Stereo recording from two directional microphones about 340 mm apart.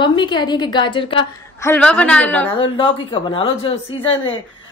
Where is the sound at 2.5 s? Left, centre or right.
Centre.